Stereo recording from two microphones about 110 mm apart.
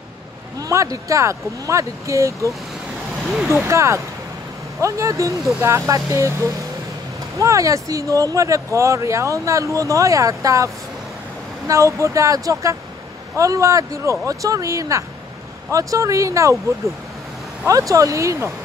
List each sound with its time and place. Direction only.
0.6 s speech: 30° right (ahead or behind)
3.6 s speech: 25° right (ahead or behind)
17.6 s speech: 30° right (ahead or behind)